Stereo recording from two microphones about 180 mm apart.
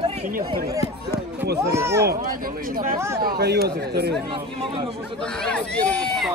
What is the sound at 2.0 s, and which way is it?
Speech, 50° right (ahead or behind).